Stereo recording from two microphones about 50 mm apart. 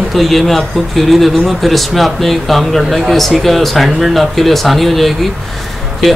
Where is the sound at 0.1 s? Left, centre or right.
Centre.